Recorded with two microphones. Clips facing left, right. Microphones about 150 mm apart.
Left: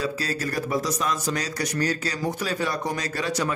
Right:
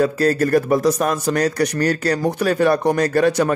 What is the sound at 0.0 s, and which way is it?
A man's voice, 55° right (ahead or behind).